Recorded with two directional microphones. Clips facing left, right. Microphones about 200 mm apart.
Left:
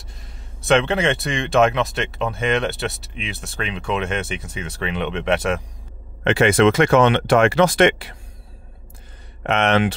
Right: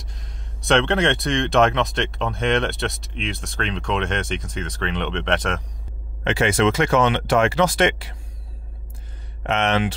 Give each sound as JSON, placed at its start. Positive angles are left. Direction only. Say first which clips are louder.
{"t": 0.0, "sound": "speech", "louder": "right 1 dB", "side_deg": 5}
{"t": 6.2, "sound": "speech", "louder": "left 4 dB", "side_deg": 60}
{"t": 9.4, "sound": "speech", "louder": "left 3 dB", "side_deg": 60}